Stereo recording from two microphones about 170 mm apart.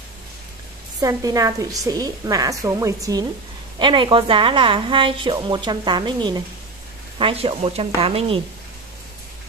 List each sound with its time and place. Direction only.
1.0 s a woman's voice: 20° right (ahead or behind)